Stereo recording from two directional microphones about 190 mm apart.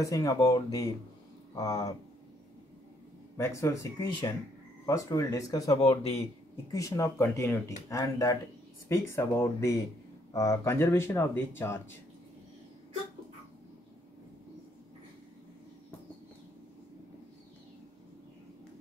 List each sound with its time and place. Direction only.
0.0 s speech: 20° left (ahead or behind)
3.3 s speech: 15° left (ahead or behind)
5.8 s speech: 35° left (ahead or behind)
6.7 s speech: 15° left (ahead or behind)